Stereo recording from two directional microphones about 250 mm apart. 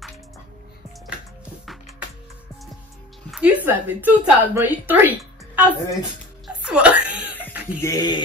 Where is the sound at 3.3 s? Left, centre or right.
Centre.